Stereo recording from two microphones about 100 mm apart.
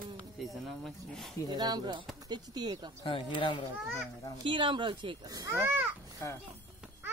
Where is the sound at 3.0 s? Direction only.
65° left (ahead or behind).